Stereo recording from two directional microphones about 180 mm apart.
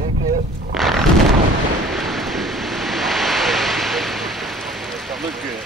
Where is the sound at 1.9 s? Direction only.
Centre (ahead or behind).